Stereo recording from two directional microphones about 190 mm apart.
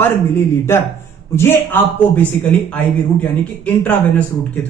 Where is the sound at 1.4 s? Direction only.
10° left (ahead or behind).